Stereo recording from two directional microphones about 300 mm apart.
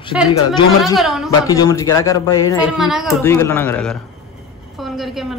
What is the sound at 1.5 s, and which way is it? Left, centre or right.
A man's voice, centre.